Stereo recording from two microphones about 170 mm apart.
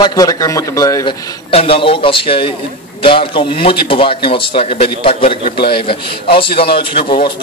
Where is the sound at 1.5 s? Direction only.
35° left (ahead or behind).